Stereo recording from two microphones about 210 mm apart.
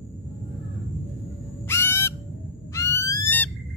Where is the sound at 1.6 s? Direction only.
10° left (ahead or behind).